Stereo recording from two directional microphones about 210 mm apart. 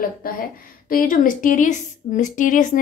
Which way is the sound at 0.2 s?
40° left (ahead or behind).